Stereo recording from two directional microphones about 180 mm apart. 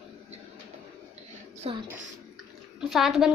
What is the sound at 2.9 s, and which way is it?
Speech, centre (ahead or behind).